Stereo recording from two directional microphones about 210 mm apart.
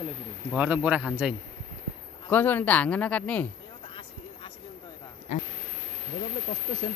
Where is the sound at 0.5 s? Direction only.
5° right (ahead or behind).